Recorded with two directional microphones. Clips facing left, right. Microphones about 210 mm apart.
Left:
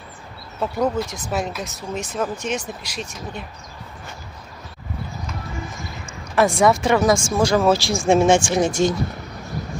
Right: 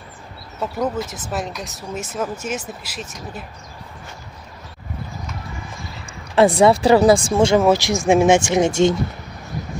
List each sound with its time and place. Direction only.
0.6 s speech: centre (ahead or behind)
6.3 s speech: 30° right (ahead or behind)